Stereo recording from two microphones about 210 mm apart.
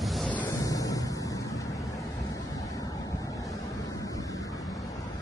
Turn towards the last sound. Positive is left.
turn(degrees=15)  # may be behind; listen again after turning